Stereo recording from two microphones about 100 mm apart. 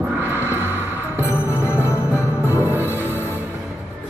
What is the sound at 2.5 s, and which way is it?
Music, 20° right (ahead or behind).